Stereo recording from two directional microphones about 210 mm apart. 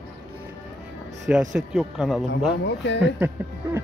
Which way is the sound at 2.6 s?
55° left (ahead or behind).